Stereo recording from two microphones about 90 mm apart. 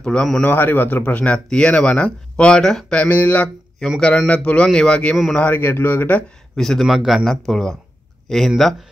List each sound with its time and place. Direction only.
0.0 s speech: 10° left (ahead or behind)
0.5 s speech: 25° left (ahead or behind); by 3.0 s 5° left (ahead or behind)
3.0 s speech: 20° left (ahead or behind)
6.5 s a man's voice: 5° left (ahead or behind)